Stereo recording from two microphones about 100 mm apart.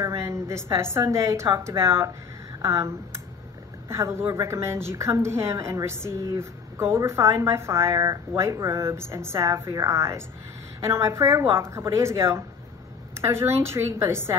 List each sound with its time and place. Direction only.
0.0 s a woman's voice: 30° right (ahead or behind)